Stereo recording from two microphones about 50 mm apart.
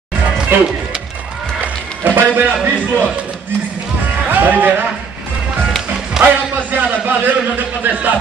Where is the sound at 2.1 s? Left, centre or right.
Right.